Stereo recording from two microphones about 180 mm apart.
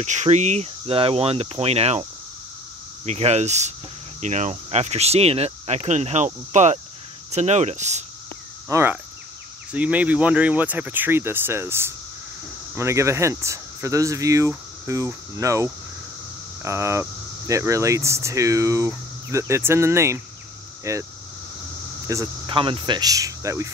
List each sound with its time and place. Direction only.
0.0 s speech: 40° right (ahead or behind)
3.1 s speech: 40° right (ahead or behind)
8.6 s speech: 15° right (ahead or behind)
22.5 s speech: 30° right (ahead or behind)